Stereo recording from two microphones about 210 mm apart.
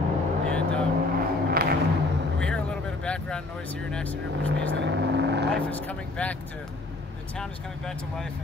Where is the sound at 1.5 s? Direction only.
50° right (ahead or behind).